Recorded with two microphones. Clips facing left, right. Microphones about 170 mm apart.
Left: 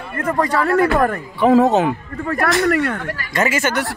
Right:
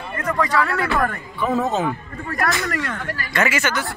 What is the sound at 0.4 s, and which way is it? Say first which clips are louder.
Speech: left 6 dB; 40° left (ahead or behind).